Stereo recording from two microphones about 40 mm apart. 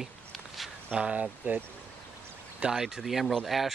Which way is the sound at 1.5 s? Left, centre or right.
Right.